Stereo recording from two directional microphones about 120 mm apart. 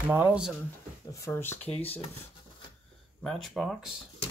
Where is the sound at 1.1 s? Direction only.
25° left (ahead or behind).